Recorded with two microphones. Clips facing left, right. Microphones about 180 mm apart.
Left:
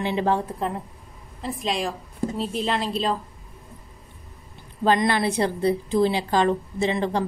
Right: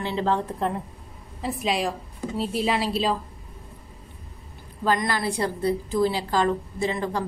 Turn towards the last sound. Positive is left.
turn(degrees=25)  # may be behind; listen again after turning